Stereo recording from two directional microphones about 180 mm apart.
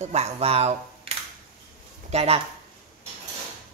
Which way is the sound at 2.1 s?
35° right (ahead or behind).